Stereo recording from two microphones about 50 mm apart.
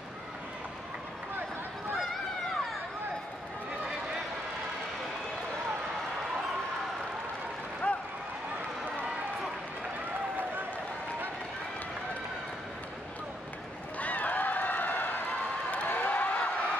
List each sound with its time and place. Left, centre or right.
7.8 s run: left
13.9 s run: left
15.7 s a sound: left